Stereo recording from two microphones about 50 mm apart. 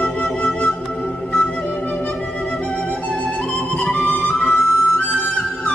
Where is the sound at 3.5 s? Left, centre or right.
Left.